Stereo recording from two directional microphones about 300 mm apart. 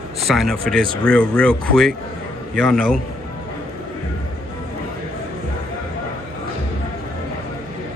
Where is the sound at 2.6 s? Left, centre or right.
Centre.